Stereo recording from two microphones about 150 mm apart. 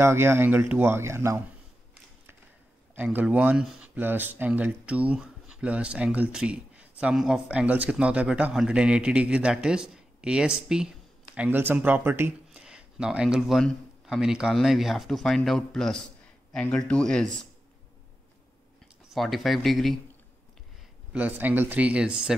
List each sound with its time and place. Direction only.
0.0 s speech: 15° right (ahead or behind)
3.0 s speech: 10° right (ahead or behind); by 17.5 s 5° left (ahead or behind)
19.0 s speech: centre (ahead or behind)
21.1 s speech: 10° right (ahead or behind)